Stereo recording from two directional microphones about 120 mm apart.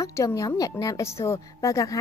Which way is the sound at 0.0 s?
25° left (ahead or behind).